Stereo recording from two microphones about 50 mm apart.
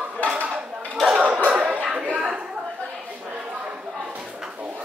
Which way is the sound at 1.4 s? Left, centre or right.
Right.